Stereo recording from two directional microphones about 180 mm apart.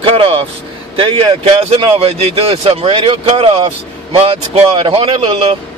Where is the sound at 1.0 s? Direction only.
30° right (ahead or behind).